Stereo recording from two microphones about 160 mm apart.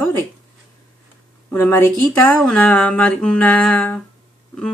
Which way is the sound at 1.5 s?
15° left (ahead or behind).